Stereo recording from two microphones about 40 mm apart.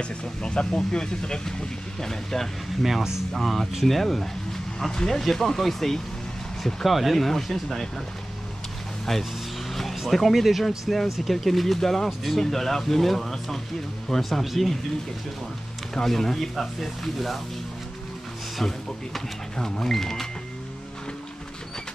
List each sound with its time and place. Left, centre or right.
0.0 s speech: left
2.8 s speech: centre
3.3 s speech: centre
9.1 s speech: centre
14.4 s speech: centre
15.9 s speech: centre
18.6 s speech: centre